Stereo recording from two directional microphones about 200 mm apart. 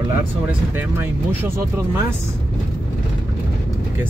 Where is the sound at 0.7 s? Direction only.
10° right (ahead or behind).